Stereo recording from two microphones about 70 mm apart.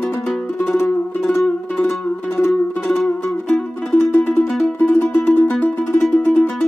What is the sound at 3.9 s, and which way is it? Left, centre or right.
Music, left.